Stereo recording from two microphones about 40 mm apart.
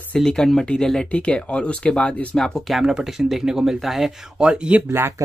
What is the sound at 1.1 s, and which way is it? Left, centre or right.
Speech, left.